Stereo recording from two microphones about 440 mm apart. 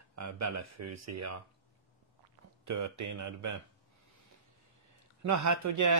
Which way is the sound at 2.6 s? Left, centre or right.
Right.